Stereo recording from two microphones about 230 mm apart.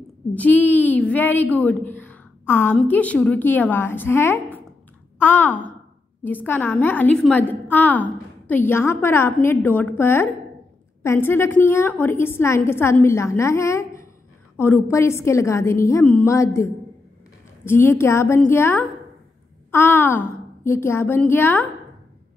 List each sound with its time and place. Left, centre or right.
0.3 s a woman's voice: centre